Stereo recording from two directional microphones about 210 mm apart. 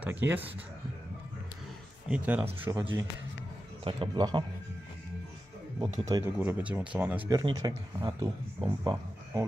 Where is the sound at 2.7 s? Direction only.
20° right (ahead or behind).